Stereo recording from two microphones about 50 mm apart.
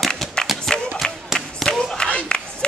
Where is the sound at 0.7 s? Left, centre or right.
Centre.